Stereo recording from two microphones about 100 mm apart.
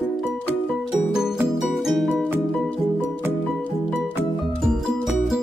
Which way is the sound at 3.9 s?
Centre (ahead or behind).